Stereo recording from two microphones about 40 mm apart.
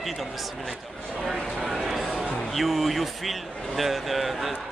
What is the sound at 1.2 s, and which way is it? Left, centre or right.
Speech, centre.